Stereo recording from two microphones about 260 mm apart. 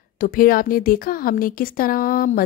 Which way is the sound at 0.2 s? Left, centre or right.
Left.